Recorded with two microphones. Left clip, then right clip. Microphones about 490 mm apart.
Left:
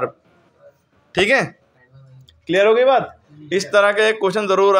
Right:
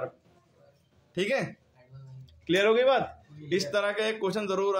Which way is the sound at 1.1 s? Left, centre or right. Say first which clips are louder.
Left 13 dB; right.